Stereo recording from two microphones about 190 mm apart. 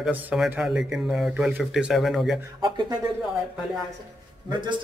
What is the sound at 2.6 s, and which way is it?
Speech, 20° right (ahead or behind).